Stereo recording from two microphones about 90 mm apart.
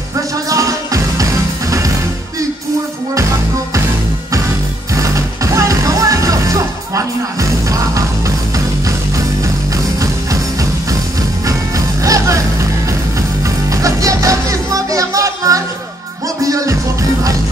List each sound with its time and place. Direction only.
0.5 s music: 40° right (ahead or behind)
4.9 s music: 35° right (ahead or behind)
10.3 s music: 40° right (ahead or behind)
12.0 s music: 35° right (ahead or behind)
13.7 s music: 40° right (ahead or behind)